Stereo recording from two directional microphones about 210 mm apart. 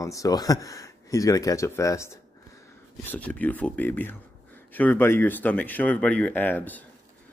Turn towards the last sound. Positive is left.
turn(degrees=10)  # may be behind; listen again after turning